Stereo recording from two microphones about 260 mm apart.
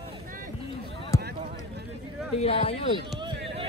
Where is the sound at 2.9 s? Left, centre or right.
Centre.